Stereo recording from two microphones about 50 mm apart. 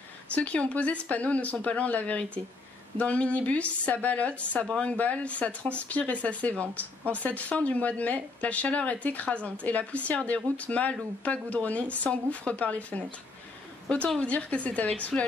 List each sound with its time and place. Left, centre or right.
0.3 s a woman's voice: left